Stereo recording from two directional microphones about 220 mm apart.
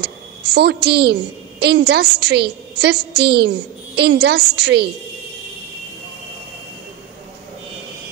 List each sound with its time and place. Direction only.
0.0 s a woman's voice: 50° right (ahead or behind)